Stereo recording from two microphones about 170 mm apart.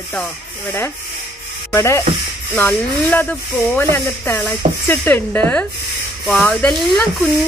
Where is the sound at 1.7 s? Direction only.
15° left (ahead or behind).